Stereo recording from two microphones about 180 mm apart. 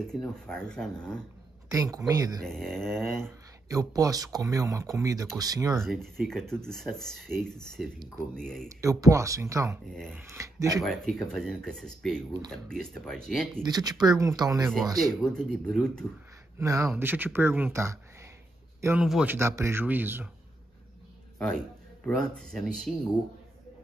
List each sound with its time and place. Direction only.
0.0 s speech: 5° left (ahead or behind)
1.7 s speech: 20° right (ahead or behind)
2.4 s speech: centre (ahead or behind)
3.2 s speech: 15° right (ahead or behind)
5.8 s speech: centre (ahead or behind)
8.6 s speech: 15° right (ahead or behind)
10.8 s speech: centre (ahead or behind)
13.6 s speech: 25° right (ahead or behind)
15.2 s speech: 5° left (ahead or behind)
16.5 s a man's voice: 15° right (ahead or behind)
22.0 s speech: 5° left (ahead or behind)